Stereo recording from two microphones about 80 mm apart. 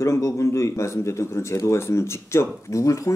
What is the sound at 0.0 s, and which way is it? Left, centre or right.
Speech, left.